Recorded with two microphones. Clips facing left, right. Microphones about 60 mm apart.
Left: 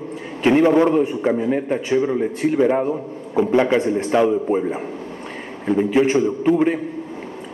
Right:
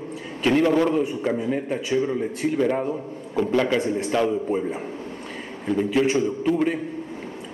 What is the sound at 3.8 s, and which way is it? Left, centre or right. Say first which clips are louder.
A man's voice: left 5 dB; left.